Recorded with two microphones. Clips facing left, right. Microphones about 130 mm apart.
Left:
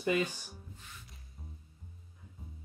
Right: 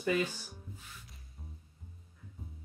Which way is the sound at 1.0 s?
Centre (ahead or behind).